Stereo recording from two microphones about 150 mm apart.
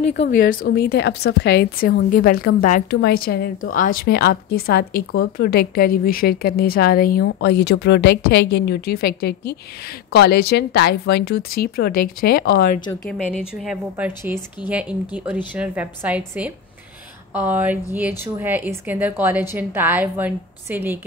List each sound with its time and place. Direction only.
0.0 s a woman's voice: 55° left (ahead or behind)
0.4 s a woman's voice: 80° left
13.3 s a woman's voice: 5° right (ahead or behind)
14.0 s a woman's voice: 15° right (ahead or behind)